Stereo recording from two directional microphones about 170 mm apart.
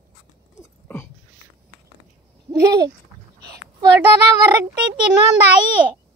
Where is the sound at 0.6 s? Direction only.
15° left (ahead or behind).